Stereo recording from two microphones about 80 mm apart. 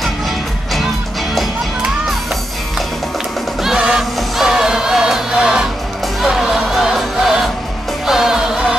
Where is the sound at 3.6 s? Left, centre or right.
Centre.